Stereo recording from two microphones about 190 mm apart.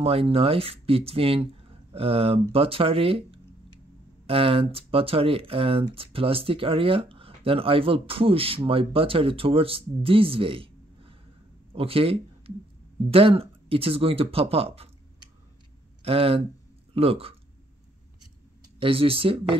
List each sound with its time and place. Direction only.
0.0 s speech: 30° right (ahead or behind)
16.0 s speech: 30° right (ahead or behind)
18.8 s speech: 30° right (ahead or behind)